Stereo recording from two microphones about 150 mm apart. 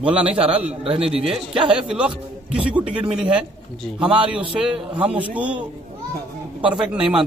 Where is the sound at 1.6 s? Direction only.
5° right (ahead or behind).